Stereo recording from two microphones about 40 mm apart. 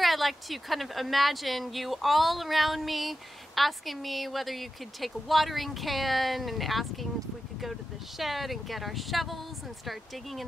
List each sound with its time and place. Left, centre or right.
0.0 s speech: centre
8.2 s speech: centre